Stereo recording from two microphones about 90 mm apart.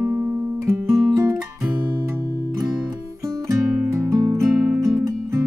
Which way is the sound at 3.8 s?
35° right (ahead or behind).